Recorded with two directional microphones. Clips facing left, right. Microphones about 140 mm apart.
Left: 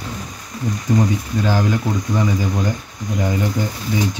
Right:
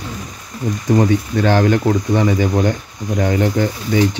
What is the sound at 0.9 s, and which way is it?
Speech, 70° right (ahead or behind).